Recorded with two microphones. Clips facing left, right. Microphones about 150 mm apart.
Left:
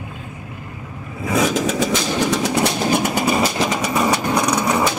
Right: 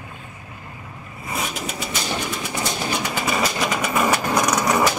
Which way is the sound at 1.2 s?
90° left.